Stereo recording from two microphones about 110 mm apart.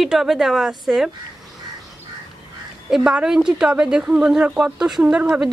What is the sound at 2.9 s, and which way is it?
A woman's voice, 5° right (ahead or behind).